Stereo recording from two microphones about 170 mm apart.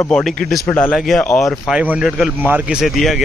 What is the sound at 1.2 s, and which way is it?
Speech, 15° left (ahead or behind).